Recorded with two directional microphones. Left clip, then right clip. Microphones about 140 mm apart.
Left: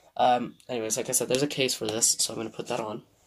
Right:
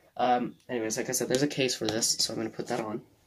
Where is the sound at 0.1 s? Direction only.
20° left (ahead or behind); by 2.8 s 5° right (ahead or behind).